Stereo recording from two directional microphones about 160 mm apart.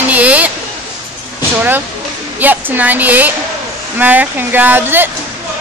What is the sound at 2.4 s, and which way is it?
Speech, 10° right (ahead or behind).